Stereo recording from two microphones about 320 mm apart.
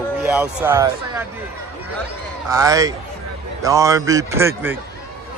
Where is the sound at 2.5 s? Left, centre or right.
Centre.